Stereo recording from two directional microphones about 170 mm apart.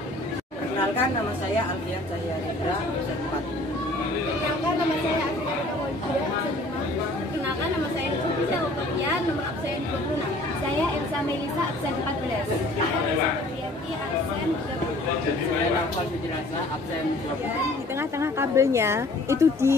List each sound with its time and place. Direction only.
18.2 s a woman's voice: 15° right (ahead or behind)